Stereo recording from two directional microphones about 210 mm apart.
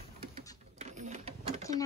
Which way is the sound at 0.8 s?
35° right (ahead or behind).